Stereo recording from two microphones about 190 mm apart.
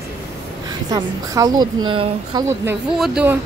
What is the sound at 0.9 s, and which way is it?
A woman's voice, 20° right (ahead or behind).